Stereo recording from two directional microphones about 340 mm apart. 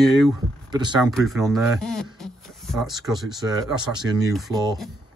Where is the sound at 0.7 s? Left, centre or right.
Centre.